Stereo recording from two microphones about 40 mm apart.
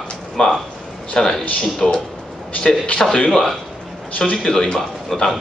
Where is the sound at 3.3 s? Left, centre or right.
Centre.